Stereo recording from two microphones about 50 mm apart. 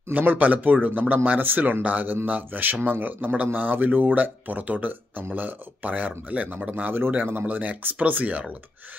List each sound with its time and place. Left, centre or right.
0.2 s speech: right
6.7 s speech: right